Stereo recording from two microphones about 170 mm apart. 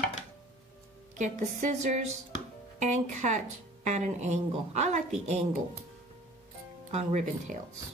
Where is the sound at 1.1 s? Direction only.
45° right (ahead or behind).